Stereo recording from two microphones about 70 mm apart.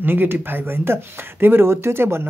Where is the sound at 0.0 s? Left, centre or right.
Right.